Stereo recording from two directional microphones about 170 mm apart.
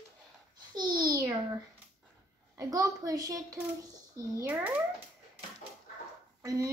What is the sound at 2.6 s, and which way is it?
A child's voice, 20° right (ahead or behind).